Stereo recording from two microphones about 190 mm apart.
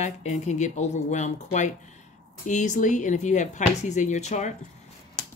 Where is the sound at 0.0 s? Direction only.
35° left (ahead or behind).